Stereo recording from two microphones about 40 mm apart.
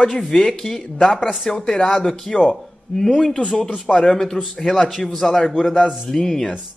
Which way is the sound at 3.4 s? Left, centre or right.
Left.